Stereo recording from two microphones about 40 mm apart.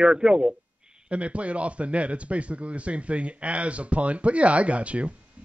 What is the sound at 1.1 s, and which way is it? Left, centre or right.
A man's voice, right.